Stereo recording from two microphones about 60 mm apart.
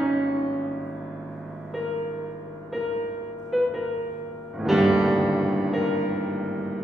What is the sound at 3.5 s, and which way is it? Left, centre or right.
Music, centre.